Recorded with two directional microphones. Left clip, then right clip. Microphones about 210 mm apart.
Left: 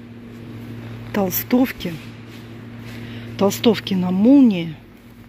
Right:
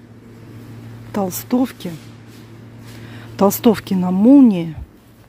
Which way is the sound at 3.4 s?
25° right (ahead or behind).